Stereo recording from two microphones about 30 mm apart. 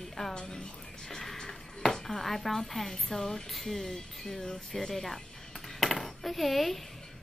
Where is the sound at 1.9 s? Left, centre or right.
Centre.